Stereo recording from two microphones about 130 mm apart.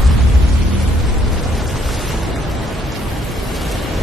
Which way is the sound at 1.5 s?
Centre (ahead or behind).